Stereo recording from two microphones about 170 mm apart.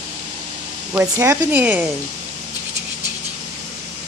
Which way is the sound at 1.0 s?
15° right (ahead or behind).